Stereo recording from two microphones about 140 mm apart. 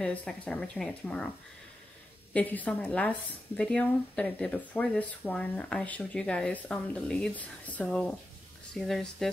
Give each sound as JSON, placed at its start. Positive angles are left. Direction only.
{"t": 0.0, "sound": "speech", "side_deg": 5}
{"t": 2.3, "sound": "a woman's voice", "side_deg": 10}